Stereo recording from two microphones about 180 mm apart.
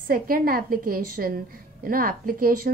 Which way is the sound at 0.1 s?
55° right (ahead or behind).